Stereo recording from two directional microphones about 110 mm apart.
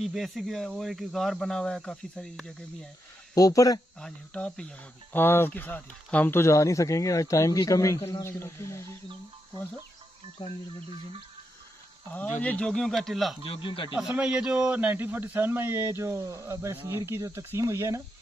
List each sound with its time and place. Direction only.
0.0 s speech: centre (ahead or behind)
3.3 s speech: 30° left (ahead or behind)
4.0 s speech: 10° left (ahead or behind)
10.4 s speech: 45° left (ahead or behind)
12.4 s speech: 10° left (ahead or behind)
13.4 s speech: 55° left (ahead or behind)
14.1 s speech: 5° right (ahead or behind); by 18.0 s 25° right (ahead or behind)